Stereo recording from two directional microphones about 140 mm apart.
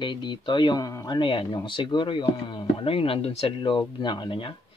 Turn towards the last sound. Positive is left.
turn(degrees=35)  # may be behind; listen again after turning